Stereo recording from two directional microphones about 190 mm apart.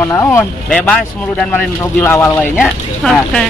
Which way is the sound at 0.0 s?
15° left (ahead or behind).